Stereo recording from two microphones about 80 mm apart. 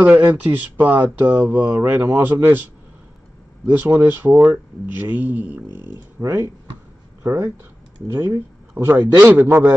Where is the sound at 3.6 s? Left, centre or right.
Right.